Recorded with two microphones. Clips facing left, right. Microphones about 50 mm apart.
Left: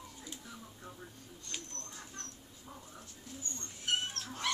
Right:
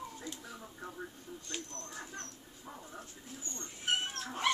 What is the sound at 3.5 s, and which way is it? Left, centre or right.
Cat, right.